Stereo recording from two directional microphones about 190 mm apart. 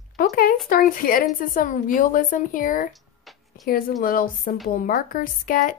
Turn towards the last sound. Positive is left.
turn(degrees=45)  # may be behind; listen again after turning